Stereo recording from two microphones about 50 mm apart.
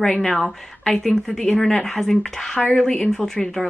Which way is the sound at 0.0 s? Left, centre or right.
Centre.